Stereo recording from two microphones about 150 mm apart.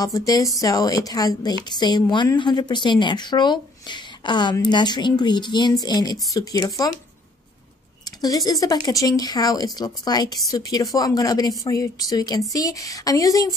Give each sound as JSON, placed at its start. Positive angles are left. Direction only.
{"t": 0.0, "sound": "a woman's voice", "side_deg": 25}
{"t": 8.5, "sound": "speech", "side_deg": 25}